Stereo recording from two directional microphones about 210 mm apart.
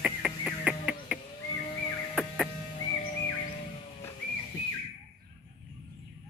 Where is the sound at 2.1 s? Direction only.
Centre (ahead or behind).